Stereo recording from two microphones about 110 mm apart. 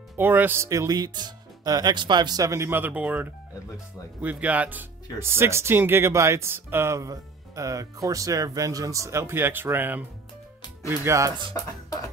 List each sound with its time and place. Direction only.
0.2 s speech: 20° right (ahead or behind)
0.7 s speech: 35° right (ahead or behind)
11.5 s speech: 30° left (ahead or behind)